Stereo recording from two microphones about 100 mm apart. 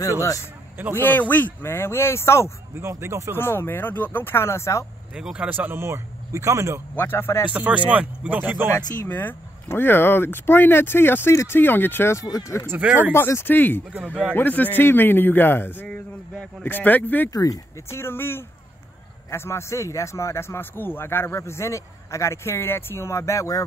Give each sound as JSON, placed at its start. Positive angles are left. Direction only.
{"t": 0.9, "sound": "speech", "side_deg": 20}
{"t": 2.7, "sound": "a man's voice", "side_deg": -25}
{"t": 3.3, "sound": "speech", "side_deg": 25}
{"t": 5.1, "sound": "speech", "side_deg": -10}
{"t": 5.5, "sound": "a man's voice", "side_deg": -20}
{"t": 7.0, "sound": "speech", "side_deg": 20}
{"t": 7.5, "sound": "speech", "side_deg": -15}
{"t": 9.0, "sound": "speech", "side_deg": 25}
{"t": 12.6, "sound": "speech", "side_deg": -20}
{"t": 13.1, "sound": "speech", "side_deg": 25}
{"t": 17.3, "sound": "speech", "side_deg": 35}